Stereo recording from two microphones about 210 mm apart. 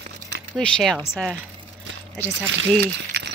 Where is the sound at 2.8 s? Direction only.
55° right (ahead or behind).